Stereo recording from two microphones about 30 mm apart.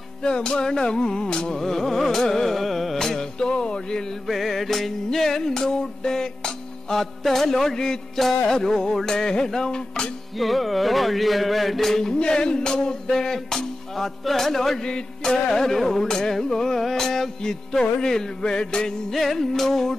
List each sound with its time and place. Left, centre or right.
0.2 s music: left
2.5 s carnatic music: centre
3.0 s music: centre
4.3 s music: centre; by 7.0 s left
7.0 s music: centre; by 10.1 s left
10.3 s music: centre
12.2 s music: left; by 14.8 s centre
14.8 s music: left; by 16.1 s centre
16.1 s music: centre
19.1 s music: centre